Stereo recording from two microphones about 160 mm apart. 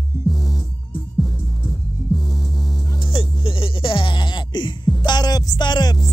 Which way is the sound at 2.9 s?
30° left (ahead or behind).